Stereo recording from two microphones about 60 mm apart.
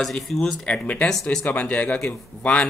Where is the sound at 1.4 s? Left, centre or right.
Left.